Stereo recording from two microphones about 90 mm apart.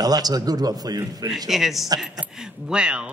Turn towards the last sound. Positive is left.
turn(degrees=-10)  # may be behind; listen again after turning